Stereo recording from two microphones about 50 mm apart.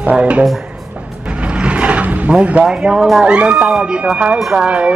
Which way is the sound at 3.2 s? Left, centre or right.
Right.